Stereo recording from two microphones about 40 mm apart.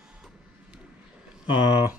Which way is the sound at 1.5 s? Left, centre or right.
Right.